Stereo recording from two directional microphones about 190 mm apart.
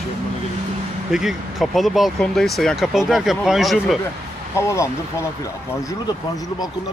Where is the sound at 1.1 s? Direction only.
Centre (ahead or behind).